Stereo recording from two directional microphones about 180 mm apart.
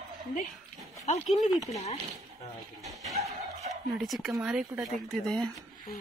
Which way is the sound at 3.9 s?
Centre (ahead or behind).